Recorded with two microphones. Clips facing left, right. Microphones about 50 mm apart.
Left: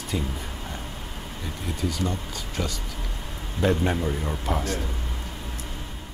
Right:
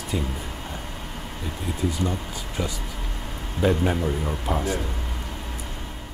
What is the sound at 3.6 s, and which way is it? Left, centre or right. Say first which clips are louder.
Speech: right 1 dB; centre.